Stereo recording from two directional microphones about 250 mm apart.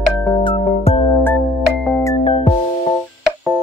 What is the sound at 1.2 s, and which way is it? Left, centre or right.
Music, centre.